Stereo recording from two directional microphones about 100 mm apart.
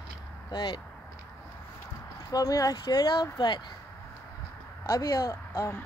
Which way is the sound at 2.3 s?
40° left (ahead or behind).